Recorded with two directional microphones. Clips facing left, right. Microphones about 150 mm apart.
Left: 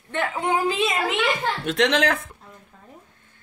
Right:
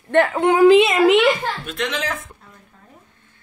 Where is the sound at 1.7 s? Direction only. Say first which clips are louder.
Left 9 dB; 75° left (ahead or behind).